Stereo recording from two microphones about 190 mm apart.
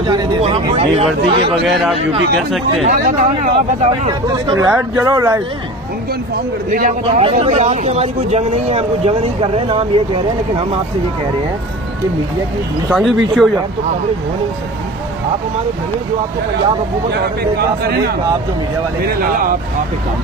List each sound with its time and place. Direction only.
0.1 s speech: 25° right (ahead or behind)
1.7 s speech: centre (ahead or behind)
2.9 s speech: 40° right (ahead or behind)
4.1 s speech: 20° right (ahead or behind)
6.3 s speech: 45° right (ahead or behind); by 10.2 s 25° right (ahead or behind)
12.9 s speech: centre (ahead or behind)
17.1 s speech: 55° right (ahead or behind)